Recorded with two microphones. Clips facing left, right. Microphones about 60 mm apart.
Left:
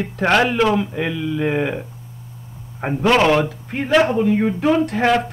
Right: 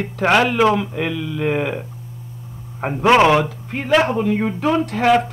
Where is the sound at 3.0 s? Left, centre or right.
Centre.